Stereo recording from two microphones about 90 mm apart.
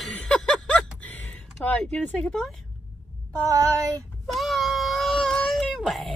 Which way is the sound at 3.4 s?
40° right (ahead or behind).